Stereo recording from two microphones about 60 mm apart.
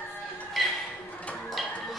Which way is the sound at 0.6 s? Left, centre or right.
Centre.